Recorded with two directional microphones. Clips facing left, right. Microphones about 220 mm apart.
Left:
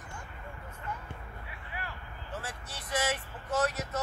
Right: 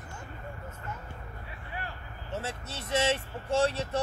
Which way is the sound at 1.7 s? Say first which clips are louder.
Right 2 dB; 25° right (ahead or behind).